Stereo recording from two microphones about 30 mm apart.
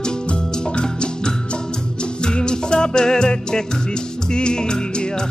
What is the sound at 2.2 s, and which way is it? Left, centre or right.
Music, left.